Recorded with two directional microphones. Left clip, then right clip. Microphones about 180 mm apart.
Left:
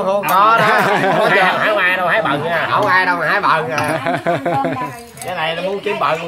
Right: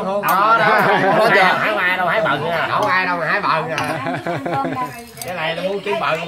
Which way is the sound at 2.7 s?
55° left (ahead or behind).